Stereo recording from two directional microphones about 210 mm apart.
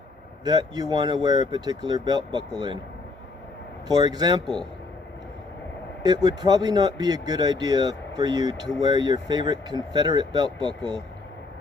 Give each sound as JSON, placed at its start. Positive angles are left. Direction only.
{"t": 0.4, "sound": "speech", "side_deg": -20}
{"t": 3.8, "sound": "speech", "side_deg": -20}
{"t": 6.0, "sound": "speech", "side_deg": -20}